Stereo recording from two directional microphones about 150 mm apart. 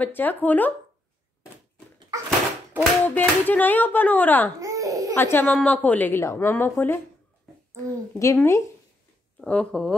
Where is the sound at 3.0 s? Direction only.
10° left (ahead or behind).